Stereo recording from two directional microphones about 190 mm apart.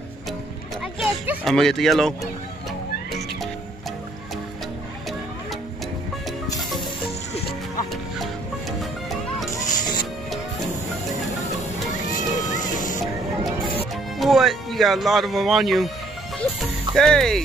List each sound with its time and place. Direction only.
0.9 s speech: 5° right (ahead or behind)
12.1 s music: 40° left (ahead or behind)
14.1 s speech: centre (ahead or behind)
16.9 s speech: centre (ahead or behind)